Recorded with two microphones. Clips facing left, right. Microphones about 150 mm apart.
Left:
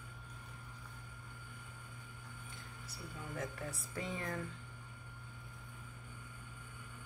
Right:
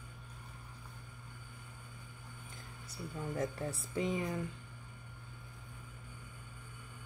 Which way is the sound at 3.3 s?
35° right (ahead or behind).